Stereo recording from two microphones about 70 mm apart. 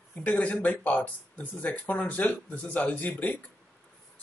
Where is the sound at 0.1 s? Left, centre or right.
Centre.